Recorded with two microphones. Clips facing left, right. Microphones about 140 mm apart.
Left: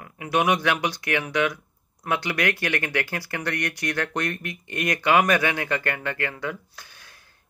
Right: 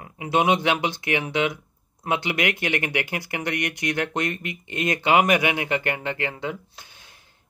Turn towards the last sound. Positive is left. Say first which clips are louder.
# even
turn(degrees=-20)  # may be behind; listen again after turning